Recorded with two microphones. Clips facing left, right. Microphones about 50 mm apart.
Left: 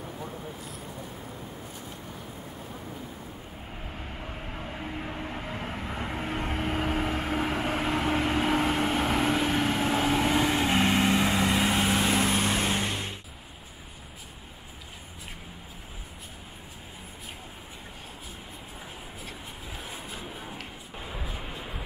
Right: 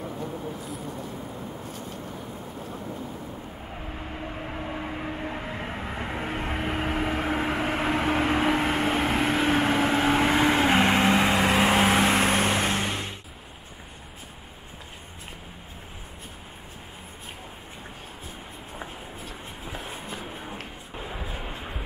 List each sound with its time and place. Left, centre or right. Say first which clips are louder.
3.7 s vehicle: right 4 dB; centre; by 12.4 s right
12.7 s vehicle: right 2 dB; right
19.6 s a sound: right 4 dB; right